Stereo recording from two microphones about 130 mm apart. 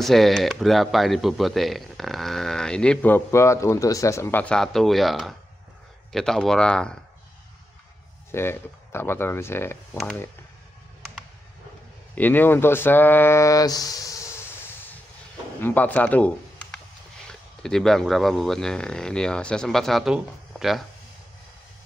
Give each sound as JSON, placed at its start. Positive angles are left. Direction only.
{"t": 0.0, "sound": "speech", "side_deg": 0}
{"t": 8.3, "sound": "speech", "side_deg": 20}
{"t": 12.2, "sound": "speech", "side_deg": 15}